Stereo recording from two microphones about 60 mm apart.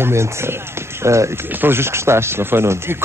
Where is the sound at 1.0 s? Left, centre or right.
Right.